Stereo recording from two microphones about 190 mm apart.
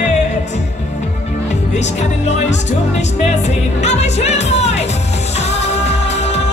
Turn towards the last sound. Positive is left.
turn(degrees=35)  # may be behind; listen again after turning